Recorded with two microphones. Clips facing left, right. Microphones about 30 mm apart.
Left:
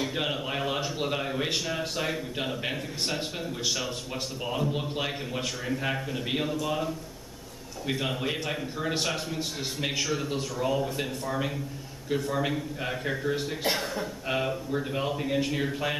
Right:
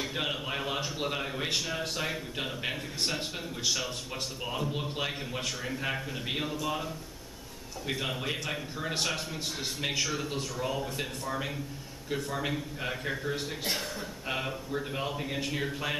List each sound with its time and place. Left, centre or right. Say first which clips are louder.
0.0 s a man's voice: left 3 dB; centre
13.7 s a man's voice: left 6 dB; centre
14.2 s a man's voice: left 4 dB; centre